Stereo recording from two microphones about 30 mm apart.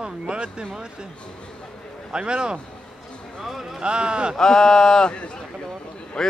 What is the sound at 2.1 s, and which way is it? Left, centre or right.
Speech, right.